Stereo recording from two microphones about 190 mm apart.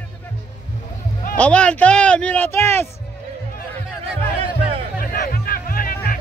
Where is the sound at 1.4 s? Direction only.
5° left (ahead or behind).